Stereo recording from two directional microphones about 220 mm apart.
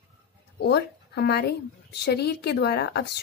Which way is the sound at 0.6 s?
50° left (ahead or behind).